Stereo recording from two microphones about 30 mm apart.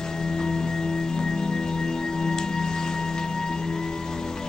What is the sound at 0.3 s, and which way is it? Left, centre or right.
Music, centre.